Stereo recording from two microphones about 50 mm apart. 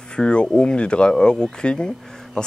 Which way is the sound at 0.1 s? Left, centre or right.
Centre.